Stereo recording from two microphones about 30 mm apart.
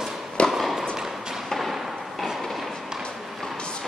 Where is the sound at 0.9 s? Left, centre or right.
Centre.